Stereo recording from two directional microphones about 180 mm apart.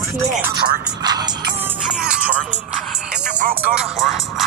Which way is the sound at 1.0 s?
25° right (ahead or behind).